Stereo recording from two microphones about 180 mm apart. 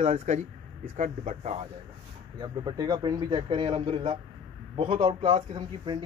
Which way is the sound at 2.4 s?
25° right (ahead or behind).